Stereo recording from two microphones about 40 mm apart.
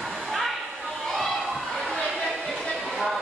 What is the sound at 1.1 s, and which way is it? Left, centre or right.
Children playing, centre.